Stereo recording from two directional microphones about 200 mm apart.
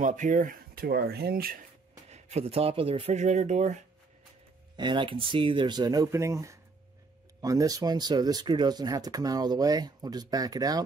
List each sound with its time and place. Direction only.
0.0 s speech: 40° right (ahead or behind)
2.0 s speech: 35° right (ahead or behind)
4.7 s speech: 25° right (ahead or behind)